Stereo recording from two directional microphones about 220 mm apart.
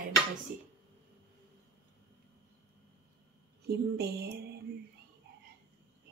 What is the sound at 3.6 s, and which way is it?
Speech, 50° right (ahead or behind).